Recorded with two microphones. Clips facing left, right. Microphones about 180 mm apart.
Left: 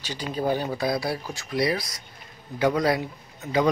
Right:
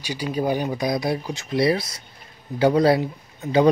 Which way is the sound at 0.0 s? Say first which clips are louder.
Right 3 dB; 10° right (ahead or behind).